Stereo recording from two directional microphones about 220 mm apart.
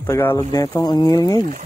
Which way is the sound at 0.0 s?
10° left (ahead or behind).